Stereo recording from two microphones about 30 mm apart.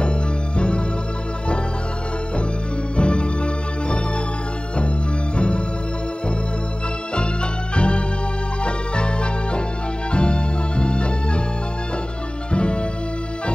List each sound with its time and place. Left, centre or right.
0.6 s music: left
3.0 s music: left
4.7 s music: left
7.7 s music: left
12.4 s music: left